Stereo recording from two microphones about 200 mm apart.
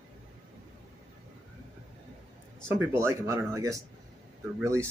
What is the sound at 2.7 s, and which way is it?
Speech, 10° right (ahead or behind).